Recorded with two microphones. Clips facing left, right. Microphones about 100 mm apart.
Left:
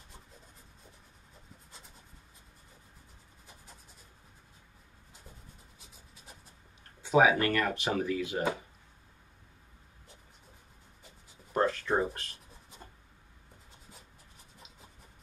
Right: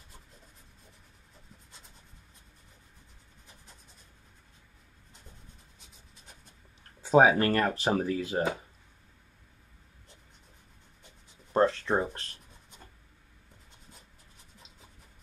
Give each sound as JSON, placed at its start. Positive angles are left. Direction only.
{"t": 5.8, "sound": "a sound", "side_deg": 5}
{"t": 7.0, "sound": "speech", "side_deg": -35}
{"t": 11.5, "sound": "writing", "side_deg": -30}
{"t": 13.7, "sound": "writing", "side_deg": 0}